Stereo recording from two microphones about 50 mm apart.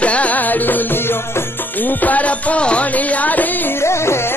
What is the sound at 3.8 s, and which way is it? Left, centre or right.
Music, left.